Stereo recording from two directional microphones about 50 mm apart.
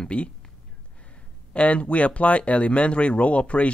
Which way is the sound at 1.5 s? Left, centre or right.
Left.